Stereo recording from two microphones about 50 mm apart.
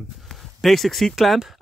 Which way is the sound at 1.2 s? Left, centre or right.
Centre.